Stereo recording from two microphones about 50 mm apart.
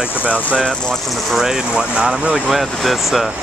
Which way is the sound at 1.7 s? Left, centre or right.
Centre.